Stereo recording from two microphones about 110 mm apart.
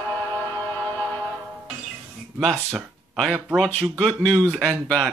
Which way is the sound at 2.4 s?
Centre (ahead or behind).